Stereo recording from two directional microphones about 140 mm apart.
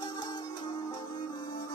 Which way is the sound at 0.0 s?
30° left (ahead or behind).